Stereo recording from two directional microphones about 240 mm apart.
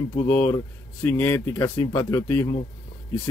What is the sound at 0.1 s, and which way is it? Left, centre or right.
Speech, left.